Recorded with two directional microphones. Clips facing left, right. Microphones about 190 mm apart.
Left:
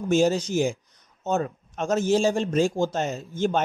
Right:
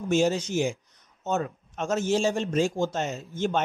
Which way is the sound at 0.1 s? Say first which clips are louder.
Left 3 dB; 35° left (ahead or behind).